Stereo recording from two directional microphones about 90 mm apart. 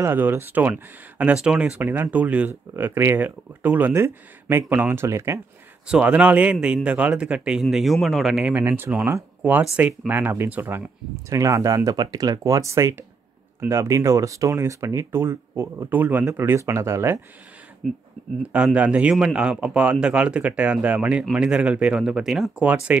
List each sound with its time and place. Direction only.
0.0 s speech: 25° right (ahead or behind); by 1.8 s 10° right (ahead or behind)
1.8 s speech: 20° right (ahead or behind)
2.7 s speech: 30° right (ahead or behind)
5.9 s speech: 10° right (ahead or behind)
7.6 s speech: centre (ahead or behind)
8.6 s speech: 25° right (ahead or behind)
11.2 s speech: 35° right (ahead or behind)
15.9 s speech: 20° right (ahead or behind)
17.8 s speech: 5° left (ahead or behind)
18.5 s speech: 15° right (ahead or behind)
22.7 s speech: 15° right (ahead or behind)